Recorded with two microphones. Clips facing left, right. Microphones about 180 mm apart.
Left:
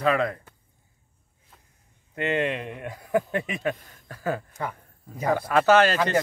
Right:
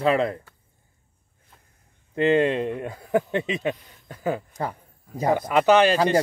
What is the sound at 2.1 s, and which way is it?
Speech, 30° right (ahead or behind).